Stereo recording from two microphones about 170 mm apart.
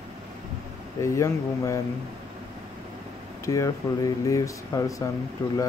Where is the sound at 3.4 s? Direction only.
20° left (ahead or behind).